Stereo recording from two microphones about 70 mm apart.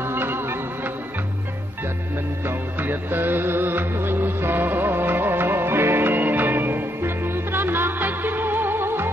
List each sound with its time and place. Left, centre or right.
0.0 s music: right
2.4 s music: right